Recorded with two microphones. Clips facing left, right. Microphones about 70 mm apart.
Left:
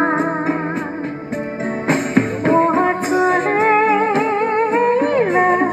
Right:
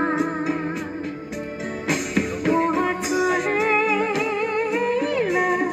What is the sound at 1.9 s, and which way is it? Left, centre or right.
Music, left.